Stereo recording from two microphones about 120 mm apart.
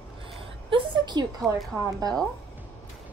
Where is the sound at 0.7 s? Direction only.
40° right (ahead or behind).